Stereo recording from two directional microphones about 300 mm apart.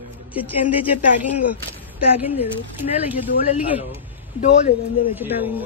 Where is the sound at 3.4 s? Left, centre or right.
Left.